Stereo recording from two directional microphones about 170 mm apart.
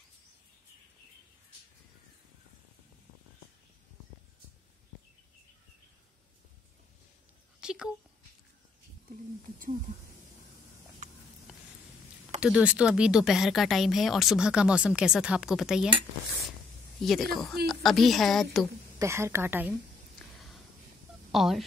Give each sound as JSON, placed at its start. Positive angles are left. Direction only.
{"t": 7.6, "sound": "a sound", "side_deg": -5}
{"t": 12.4, "sound": "speech", "side_deg": -5}
{"t": 17.0, "sound": "speech", "side_deg": 0}
{"t": 18.9, "sound": "a woman's voice", "side_deg": -15}
{"t": 20.2, "sound": "a sound", "side_deg": 0}
{"t": 21.3, "sound": "speech", "side_deg": 0}